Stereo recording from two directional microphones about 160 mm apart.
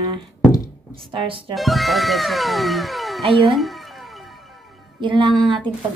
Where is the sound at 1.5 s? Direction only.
Centre (ahead or behind).